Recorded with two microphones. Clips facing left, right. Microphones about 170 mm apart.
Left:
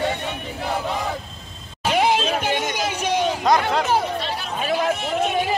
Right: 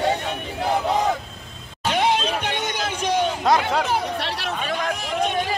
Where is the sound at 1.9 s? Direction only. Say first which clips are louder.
Left 2 dB; 5° left (ahead or behind).